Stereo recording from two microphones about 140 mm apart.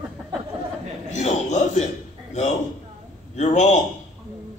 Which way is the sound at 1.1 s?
55° left (ahead or behind).